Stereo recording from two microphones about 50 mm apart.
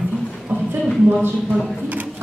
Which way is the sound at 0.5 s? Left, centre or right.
Right.